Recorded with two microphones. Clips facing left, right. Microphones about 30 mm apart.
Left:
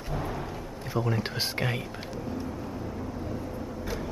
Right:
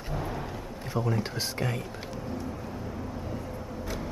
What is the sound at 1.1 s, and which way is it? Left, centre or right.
Speech, left.